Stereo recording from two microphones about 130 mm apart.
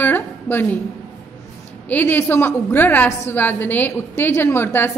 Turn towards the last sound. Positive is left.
turn(degrees=15)  # may be behind; listen again after turning